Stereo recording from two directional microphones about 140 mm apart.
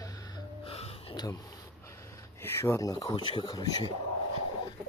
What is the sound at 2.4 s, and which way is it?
Speech, 15° left (ahead or behind).